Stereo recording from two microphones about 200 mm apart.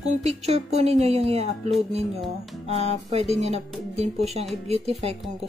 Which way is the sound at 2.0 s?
Centre (ahead or behind).